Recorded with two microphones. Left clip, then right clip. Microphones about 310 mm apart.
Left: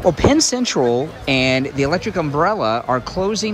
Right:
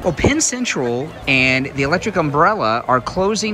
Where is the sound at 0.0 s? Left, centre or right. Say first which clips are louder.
Left 3 dB; centre.